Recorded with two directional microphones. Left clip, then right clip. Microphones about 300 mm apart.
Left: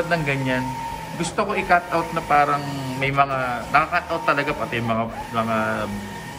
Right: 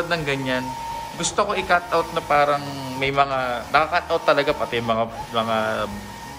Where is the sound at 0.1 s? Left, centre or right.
Centre.